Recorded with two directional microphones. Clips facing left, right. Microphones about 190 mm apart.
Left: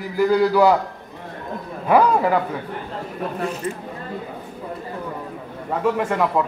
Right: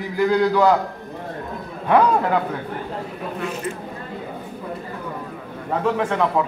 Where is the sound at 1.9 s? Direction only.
5° left (ahead or behind).